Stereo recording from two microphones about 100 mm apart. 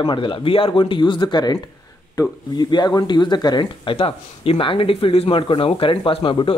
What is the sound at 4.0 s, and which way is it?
Speech, 70° left (ahead or behind).